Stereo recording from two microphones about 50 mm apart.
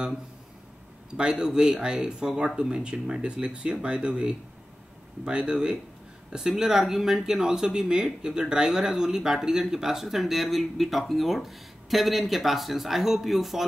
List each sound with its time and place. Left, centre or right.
1.1 s speech: centre